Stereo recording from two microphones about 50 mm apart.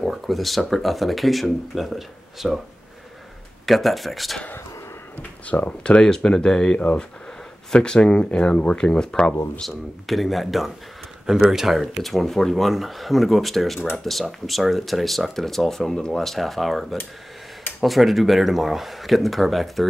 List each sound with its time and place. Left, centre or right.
0.0 s speech: centre
3.6 s speech: centre
5.1 s speech: left
5.9 s speech: centre
9.6 s speech: centre